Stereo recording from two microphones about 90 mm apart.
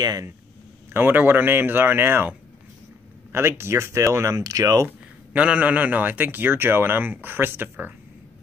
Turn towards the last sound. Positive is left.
turn(degrees=-20)  # may be behind; listen again after turning